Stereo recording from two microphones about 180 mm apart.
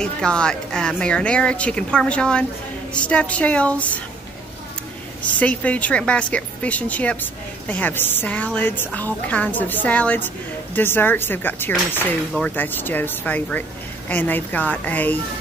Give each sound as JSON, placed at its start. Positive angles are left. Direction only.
{"t": 0.0, "sound": "a woman's voice", "side_deg": 5}
{"t": 5.2, "sound": "a woman's voice", "side_deg": 10}